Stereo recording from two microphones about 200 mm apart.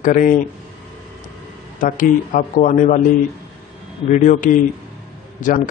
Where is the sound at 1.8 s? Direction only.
40° left (ahead or behind).